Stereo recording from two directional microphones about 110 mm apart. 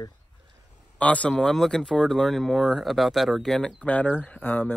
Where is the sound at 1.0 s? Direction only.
10° left (ahead or behind).